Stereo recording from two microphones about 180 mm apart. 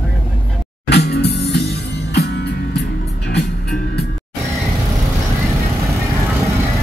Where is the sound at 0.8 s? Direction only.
65° left (ahead or behind).